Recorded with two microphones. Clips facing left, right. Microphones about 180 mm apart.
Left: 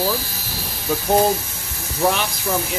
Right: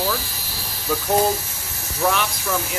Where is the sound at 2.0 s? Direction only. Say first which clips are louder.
Left 2 dB; 25° left (ahead or behind).